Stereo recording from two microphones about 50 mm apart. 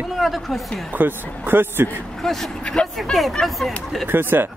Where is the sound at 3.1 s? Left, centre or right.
Centre.